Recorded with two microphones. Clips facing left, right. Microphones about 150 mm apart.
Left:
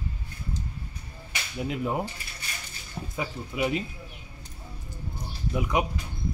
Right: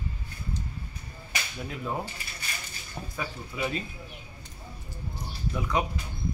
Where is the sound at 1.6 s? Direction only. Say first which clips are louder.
Left 6 dB; 15° left (ahead or behind).